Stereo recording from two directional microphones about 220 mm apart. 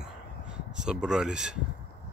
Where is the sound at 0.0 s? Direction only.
5° right (ahead or behind).